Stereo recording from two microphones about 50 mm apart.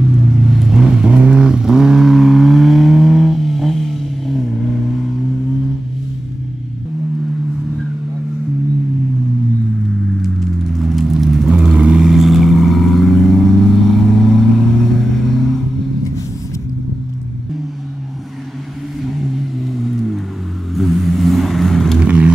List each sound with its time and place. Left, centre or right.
0.4 s vehicle: centre
1.0 s vehicle: right; by 4.7 s centre
10.7 s a sound: centre
11.4 s vehicle: centre
12.0 s vehicle: centre
19.3 s a sound: centre
20.7 s vehicle: centre
22.0 s vehicle: right